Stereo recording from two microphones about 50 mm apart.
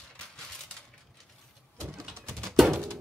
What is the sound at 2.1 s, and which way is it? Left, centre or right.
Music, right.